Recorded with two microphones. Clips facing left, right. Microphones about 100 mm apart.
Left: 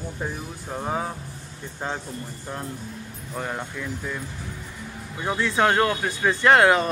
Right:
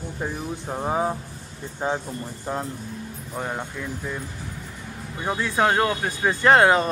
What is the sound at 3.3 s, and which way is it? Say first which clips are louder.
Speech: even; 15° right (ahead or behind).